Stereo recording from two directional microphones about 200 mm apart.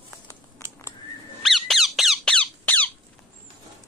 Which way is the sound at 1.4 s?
Centre (ahead or behind).